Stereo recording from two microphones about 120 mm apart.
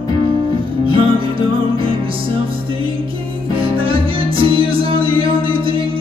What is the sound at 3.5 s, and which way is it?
Music, 50° right (ahead or behind).